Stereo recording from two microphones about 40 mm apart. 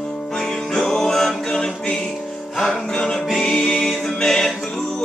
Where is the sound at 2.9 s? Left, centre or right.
Centre.